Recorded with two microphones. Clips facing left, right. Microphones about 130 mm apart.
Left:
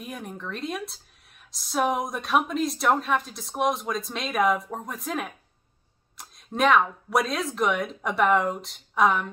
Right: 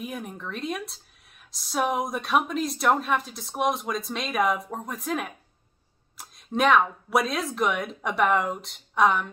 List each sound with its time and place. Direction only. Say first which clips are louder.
0.0 s speech: right 1 dB; centre (ahead or behind)